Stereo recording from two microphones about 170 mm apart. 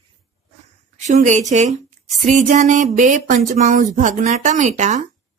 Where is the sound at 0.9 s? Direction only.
45° right (ahead or behind).